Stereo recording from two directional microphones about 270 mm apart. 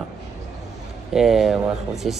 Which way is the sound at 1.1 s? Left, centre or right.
Centre.